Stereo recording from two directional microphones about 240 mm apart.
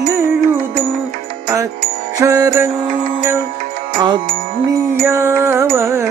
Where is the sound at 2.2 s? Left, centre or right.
Centre.